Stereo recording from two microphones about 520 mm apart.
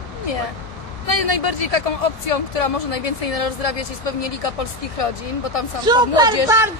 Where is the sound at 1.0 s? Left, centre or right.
Left.